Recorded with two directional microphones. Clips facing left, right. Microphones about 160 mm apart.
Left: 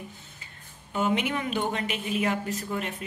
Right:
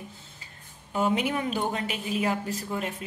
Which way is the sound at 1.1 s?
35° right (ahead or behind).